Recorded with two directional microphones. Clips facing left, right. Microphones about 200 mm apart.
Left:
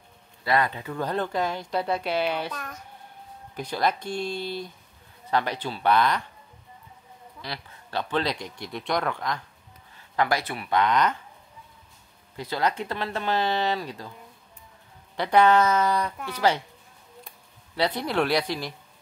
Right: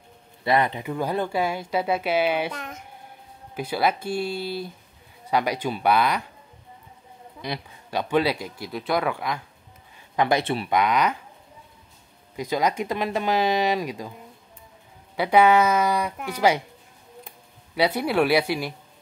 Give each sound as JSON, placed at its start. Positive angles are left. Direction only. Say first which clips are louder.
{"t": 0.4, "sound": "speech", "louder": "right 3 dB", "side_deg": -20}
{"t": 2.5, "sound": "speech", "louder": "right 2 dB", "side_deg": -20}
{"t": 3.5, "sound": "speech", "louder": "right 2 dB", "side_deg": -5}
{"t": 7.4, "sound": "speech", "louder": "right 6 dB", "side_deg": -15}
{"t": 10.1, "sound": "speech", "louder": "right 4 dB", "side_deg": -20}
{"t": 10.7, "sound": "speech", "louder": "even", "side_deg": -10}
{"t": 12.4, "sound": "speech", "louder": "right 3 dB", "side_deg": -15}
{"t": 15.1, "sound": "speech", "louder": "right 2 dB", "side_deg": -10}
{"t": 17.7, "sound": "speech", "louder": "right 4 dB", "side_deg": -10}